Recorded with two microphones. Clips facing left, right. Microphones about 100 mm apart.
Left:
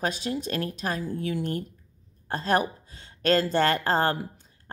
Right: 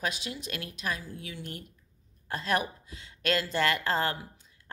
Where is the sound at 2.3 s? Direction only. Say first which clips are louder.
Left 5 dB; 35° left (ahead or behind).